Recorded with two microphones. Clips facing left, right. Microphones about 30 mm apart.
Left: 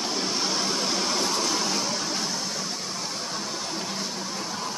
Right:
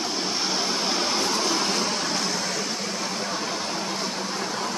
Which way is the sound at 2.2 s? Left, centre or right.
Right.